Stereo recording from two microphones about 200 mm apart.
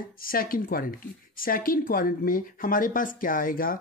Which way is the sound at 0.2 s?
45° left (ahead or behind).